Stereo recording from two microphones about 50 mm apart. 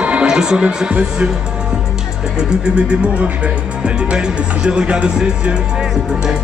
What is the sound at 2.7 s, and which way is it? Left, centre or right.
Speech, right.